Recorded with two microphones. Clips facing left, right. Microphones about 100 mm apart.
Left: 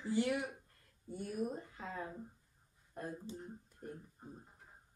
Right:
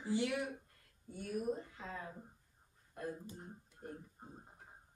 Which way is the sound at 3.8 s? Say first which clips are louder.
Even; 40° right (ahead or behind).